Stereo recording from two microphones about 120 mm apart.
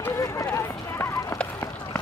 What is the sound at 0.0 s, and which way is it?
Run, 25° left (ahead or behind).